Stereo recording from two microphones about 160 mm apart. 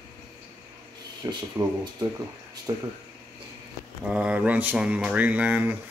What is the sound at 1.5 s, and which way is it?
Speech, 20° right (ahead or behind).